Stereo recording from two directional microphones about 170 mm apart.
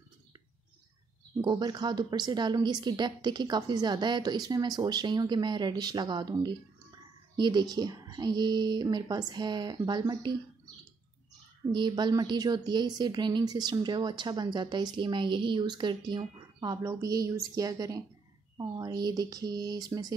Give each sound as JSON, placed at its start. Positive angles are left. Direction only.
{"t": 1.4, "sound": "a woman's voice", "side_deg": -25}
{"t": 11.7, "sound": "a woman's voice", "side_deg": -25}